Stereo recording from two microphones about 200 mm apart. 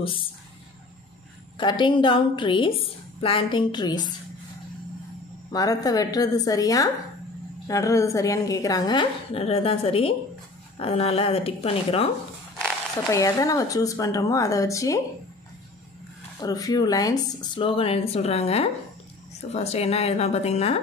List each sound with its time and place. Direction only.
1.6 s speech: 25° left (ahead or behind)
5.5 s a woman's voice: 20° left (ahead or behind)
13.1 s a woman's voice: 15° left (ahead or behind)
16.3 s a woman's voice: 20° left (ahead or behind)